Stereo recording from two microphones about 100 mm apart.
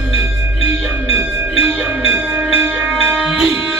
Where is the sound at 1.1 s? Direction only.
15° right (ahead or behind).